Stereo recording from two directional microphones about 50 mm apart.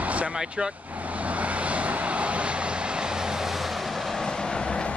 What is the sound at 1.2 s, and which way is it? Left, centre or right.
Vehicle, right.